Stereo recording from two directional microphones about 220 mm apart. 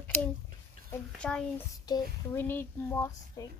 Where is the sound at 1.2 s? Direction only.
5° left (ahead or behind).